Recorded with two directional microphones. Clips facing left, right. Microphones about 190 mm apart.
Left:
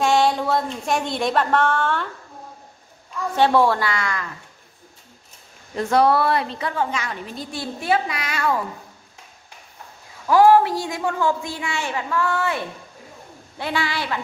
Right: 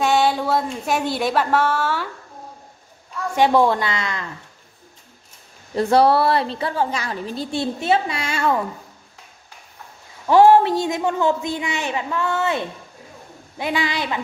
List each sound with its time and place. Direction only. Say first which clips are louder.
0.0 s speech: even; centre (ahead or behind)
3.3 s a woman's voice: right 1 dB; 15° right (ahead or behind)
5.8 s a woman's voice: right 2 dB; 30° right (ahead or behind)
10.2 s a woman's voice: right 2 dB; 25° right (ahead or behind)